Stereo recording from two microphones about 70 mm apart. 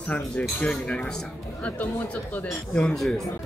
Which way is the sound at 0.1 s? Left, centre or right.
Centre.